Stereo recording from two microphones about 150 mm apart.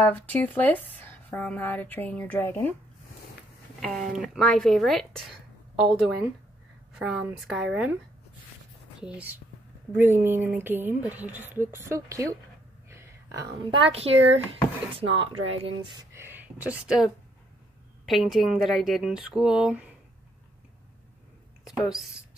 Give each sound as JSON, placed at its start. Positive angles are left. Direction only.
{"t": 0.0, "sound": "speech", "side_deg": 10}
{"t": 3.8, "sound": "speech", "side_deg": 0}
{"t": 9.0, "sound": "speech", "side_deg": -10}
{"t": 12.9, "sound": "a sound", "side_deg": -15}
{"t": 13.7, "sound": "speech", "side_deg": -40}
{"t": 16.0, "sound": "a sound", "side_deg": -15}
{"t": 16.8, "sound": "speech", "side_deg": -5}